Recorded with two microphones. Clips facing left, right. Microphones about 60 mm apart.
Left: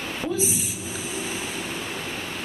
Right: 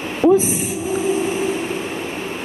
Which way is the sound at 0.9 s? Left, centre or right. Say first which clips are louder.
Right 15 dB; right.